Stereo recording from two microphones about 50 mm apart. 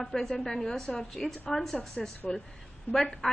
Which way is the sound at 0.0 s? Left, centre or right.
Centre.